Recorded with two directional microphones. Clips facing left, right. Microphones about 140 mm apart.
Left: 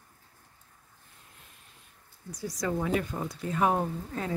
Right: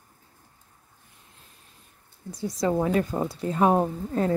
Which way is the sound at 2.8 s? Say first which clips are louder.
Right 6 dB; 40° right (ahead or behind).